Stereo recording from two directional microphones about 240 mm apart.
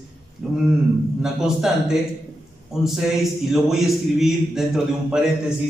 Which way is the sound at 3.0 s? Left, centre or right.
Centre.